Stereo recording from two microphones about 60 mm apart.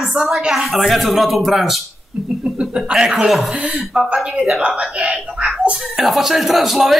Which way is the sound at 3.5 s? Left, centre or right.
Centre.